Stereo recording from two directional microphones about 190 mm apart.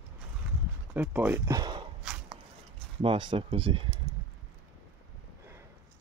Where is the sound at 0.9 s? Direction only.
10° right (ahead or behind).